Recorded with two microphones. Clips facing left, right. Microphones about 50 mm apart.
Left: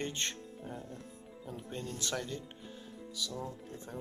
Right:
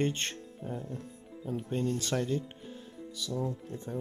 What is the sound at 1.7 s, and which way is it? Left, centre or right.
Speech, right.